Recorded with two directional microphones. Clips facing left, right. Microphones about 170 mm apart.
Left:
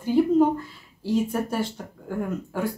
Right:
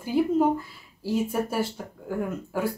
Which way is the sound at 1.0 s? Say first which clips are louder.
Left 2 dB; 10° right (ahead or behind).